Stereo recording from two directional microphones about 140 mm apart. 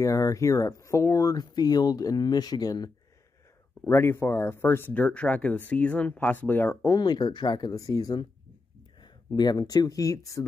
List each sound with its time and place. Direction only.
0.0 s speech: 25° left (ahead or behind)
7.0 s speech: 30° left (ahead or behind)